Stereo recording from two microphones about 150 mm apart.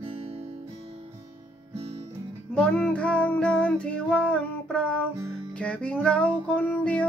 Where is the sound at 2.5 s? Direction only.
10° left (ahead or behind).